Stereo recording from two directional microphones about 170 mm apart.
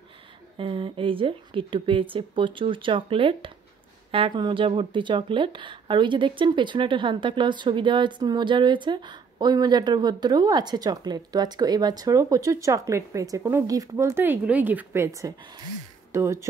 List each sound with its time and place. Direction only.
0.6 s speech: 30° right (ahead or behind)